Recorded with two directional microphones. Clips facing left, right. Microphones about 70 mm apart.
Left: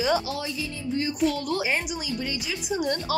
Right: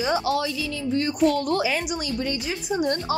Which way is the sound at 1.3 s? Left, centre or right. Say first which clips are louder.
Right 5 dB; right.